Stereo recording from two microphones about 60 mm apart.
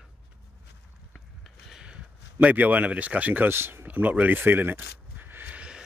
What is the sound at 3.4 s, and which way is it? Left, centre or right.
Speech, right.